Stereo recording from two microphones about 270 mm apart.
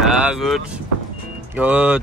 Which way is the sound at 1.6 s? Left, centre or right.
Centre.